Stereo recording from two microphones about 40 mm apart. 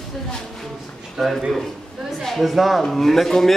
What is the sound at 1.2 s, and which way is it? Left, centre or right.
Speech, centre.